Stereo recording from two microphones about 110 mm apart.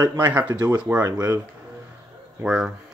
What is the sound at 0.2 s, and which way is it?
Speech, 15° right (ahead or behind).